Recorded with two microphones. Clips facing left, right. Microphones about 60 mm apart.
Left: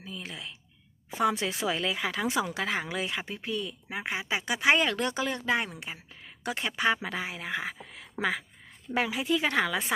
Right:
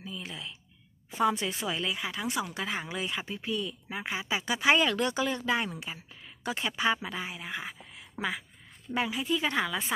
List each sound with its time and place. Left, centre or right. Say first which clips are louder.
0.0 s a sound: even; left
1.2 s speech: left 1 dB; left
2.5 s a woman's voice: left 3 dB; left
8.9 s speech: left 2 dB; left